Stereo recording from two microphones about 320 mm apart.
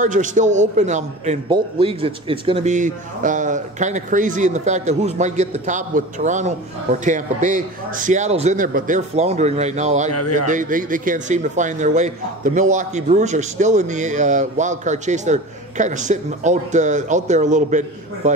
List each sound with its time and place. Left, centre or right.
0.0 s a man's voice: right
10.1 s speech: left
10.4 s a man's voice: right